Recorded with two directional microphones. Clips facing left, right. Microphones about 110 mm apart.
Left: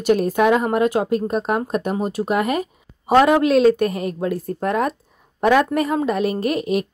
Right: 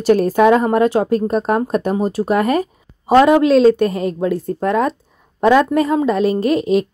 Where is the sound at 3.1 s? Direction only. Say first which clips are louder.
Right 4 dB; 25° right (ahead or behind).